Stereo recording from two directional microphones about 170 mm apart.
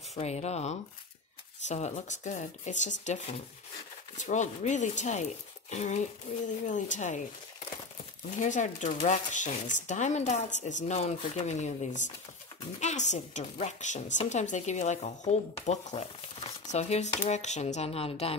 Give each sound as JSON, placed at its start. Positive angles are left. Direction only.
{"t": 0.1, "sound": "speech", "side_deg": 40}
{"t": 8.4, "sound": "speech", "side_deg": 45}